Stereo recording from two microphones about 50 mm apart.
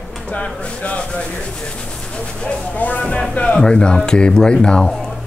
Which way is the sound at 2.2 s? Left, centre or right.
Left.